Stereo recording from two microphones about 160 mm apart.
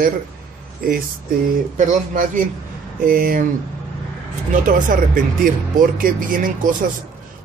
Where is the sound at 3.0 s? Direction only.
60° right (ahead or behind).